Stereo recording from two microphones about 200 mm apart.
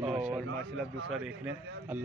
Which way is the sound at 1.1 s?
5° right (ahead or behind).